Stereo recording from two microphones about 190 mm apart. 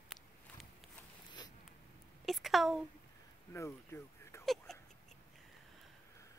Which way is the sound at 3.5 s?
15° left (ahead or behind).